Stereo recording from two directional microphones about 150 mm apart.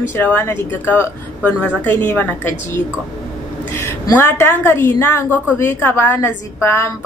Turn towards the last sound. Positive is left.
turn(degrees=15)  # may be behind; listen again after turning